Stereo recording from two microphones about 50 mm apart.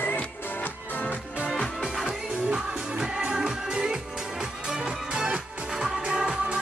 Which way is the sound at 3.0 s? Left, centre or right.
Centre.